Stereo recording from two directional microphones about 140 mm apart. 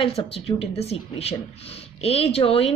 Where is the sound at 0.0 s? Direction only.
40° left (ahead or behind).